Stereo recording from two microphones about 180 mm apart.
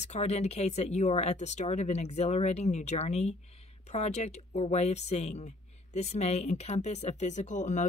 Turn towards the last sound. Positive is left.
turn(degrees=40)  # may be behind; listen again after turning